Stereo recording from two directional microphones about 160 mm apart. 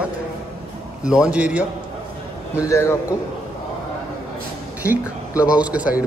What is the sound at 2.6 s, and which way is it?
Speech, 15° left (ahead or behind).